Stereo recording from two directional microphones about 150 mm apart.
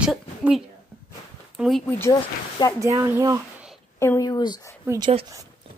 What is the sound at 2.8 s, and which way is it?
Speech, 20° right (ahead or behind).